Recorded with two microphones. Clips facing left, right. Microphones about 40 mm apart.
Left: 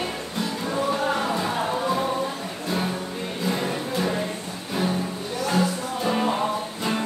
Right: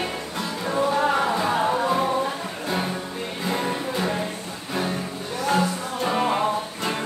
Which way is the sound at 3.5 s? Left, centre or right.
Centre.